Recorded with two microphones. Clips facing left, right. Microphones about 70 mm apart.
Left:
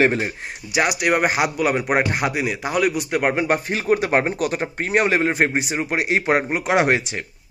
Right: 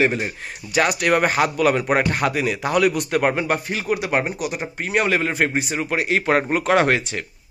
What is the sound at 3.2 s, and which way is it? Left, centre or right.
Speech, left.